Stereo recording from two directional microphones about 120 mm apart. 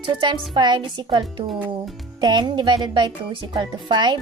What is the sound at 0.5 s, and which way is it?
Speech, 40° right (ahead or behind).